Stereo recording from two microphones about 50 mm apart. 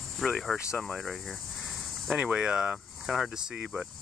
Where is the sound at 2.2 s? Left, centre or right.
Centre.